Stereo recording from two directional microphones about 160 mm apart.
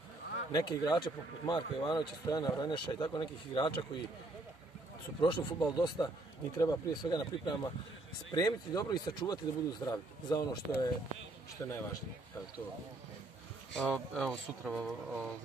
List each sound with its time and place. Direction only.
0.5 s speech: 25° left (ahead or behind)
5.2 s speech: 25° left (ahead or behind)
11.6 s speech: 15° left (ahead or behind)
13.7 s speech: 5° left (ahead or behind)